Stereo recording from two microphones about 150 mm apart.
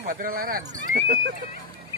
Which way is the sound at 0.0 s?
65° right (ahead or behind).